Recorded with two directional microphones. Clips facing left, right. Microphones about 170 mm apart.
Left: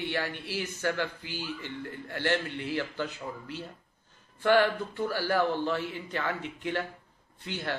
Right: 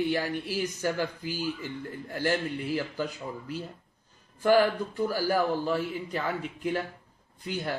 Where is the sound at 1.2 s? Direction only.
40° right (ahead or behind).